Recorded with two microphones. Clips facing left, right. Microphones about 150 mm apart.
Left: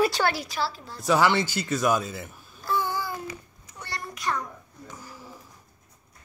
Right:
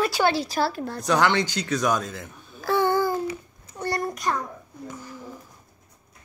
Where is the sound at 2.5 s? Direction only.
80° right.